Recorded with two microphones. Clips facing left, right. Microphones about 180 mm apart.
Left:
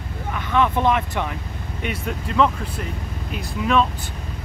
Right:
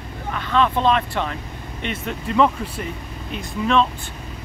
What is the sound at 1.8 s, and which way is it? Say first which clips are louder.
Speech: right 1 dB; centre (ahead or behind).